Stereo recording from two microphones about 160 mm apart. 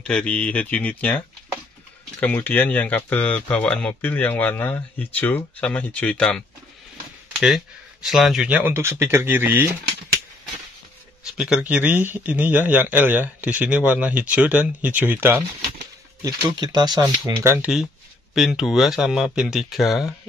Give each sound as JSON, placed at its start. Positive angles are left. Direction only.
{"t": 0.0, "sound": "speech", "side_deg": 5}
{"t": 11.2, "sound": "speech", "side_deg": -5}
{"t": 16.2, "sound": "speech", "side_deg": -25}
{"t": 18.3, "sound": "speech", "side_deg": 0}